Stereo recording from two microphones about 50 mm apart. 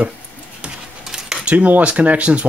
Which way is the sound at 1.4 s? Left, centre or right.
Right.